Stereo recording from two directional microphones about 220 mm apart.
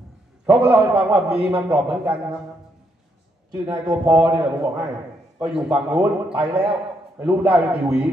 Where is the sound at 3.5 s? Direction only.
20° right (ahead or behind).